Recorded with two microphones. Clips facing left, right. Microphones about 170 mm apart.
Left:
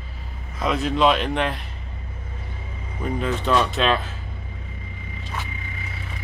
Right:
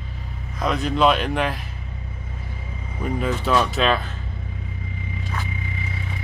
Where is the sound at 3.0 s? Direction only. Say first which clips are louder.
Even; 5° right (ahead or behind).